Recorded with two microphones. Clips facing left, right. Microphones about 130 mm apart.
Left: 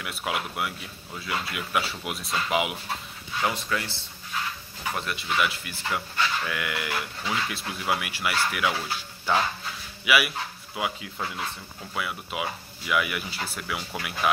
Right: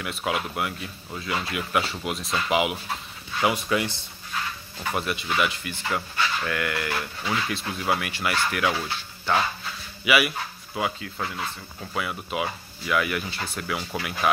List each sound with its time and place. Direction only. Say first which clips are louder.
0.0 s speech: right 3 dB; 5° left (ahead or behind)
3.4 s speech: right 5 dB; 15° right (ahead or behind)
4.9 s speech: right 2 dB; 5° right (ahead or behind)